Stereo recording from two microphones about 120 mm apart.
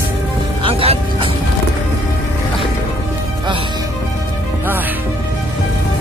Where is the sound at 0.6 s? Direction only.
50° right (ahead or behind).